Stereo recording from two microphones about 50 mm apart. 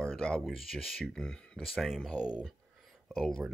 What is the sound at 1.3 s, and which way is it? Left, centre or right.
Speech, centre.